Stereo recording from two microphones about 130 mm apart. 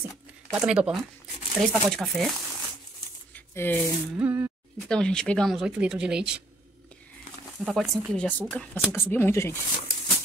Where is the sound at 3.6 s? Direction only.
15° left (ahead or behind).